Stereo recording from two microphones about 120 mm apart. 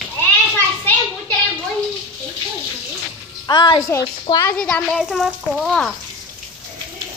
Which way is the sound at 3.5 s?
40° left (ahead or behind).